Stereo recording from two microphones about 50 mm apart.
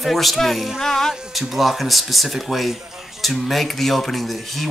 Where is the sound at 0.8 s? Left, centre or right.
Centre.